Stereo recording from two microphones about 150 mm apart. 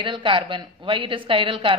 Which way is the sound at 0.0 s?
35° right (ahead or behind).